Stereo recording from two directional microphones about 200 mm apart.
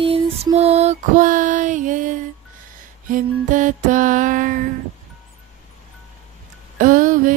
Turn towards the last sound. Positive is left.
turn(degrees=-40)  # may be behind; listen again after turning